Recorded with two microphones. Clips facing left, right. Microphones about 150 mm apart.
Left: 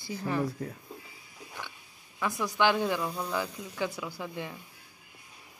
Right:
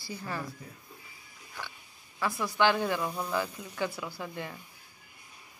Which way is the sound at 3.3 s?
10° left (ahead or behind).